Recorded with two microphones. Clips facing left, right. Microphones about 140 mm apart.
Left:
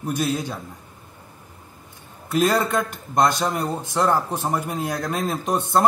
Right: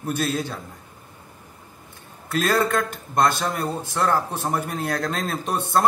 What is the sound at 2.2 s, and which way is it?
A man's voice, 15° left (ahead or behind).